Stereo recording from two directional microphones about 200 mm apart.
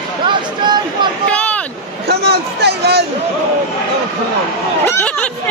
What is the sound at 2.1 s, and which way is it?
Speech, 55° right (ahead or behind).